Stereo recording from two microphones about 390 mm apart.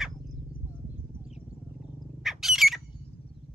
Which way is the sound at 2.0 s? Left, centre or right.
Centre.